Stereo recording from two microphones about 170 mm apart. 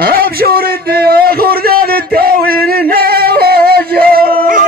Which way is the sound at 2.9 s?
65° right (ahead or behind).